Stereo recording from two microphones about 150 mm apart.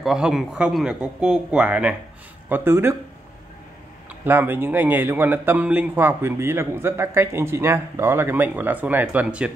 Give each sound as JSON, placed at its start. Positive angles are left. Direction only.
{"t": 0.0, "sound": "speech", "side_deg": -5}
{"t": 4.1, "sound": "speech", "side_deg": -15}